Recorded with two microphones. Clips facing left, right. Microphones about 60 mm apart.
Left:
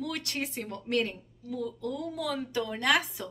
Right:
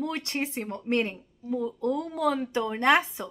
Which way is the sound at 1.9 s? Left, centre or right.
Right.